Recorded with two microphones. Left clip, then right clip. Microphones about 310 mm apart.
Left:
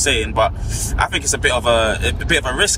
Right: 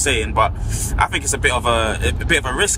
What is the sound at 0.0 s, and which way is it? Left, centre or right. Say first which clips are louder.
Speech: left 1 dB; centre.